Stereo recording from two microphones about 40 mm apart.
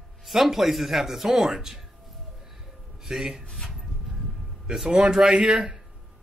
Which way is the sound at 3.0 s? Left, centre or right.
Centre.